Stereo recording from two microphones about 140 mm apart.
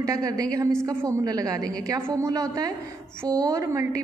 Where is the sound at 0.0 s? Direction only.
25° right (ahead or behind).